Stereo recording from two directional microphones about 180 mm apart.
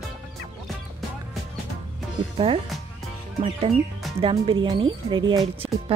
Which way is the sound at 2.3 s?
30° right (ahead or behind).